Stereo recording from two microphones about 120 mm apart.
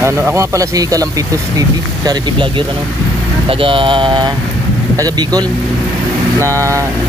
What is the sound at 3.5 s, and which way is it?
Speech, 45° right (ahead or behind).